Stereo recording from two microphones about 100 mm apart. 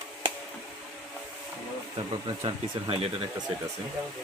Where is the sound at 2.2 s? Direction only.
65° right (ahead or behind).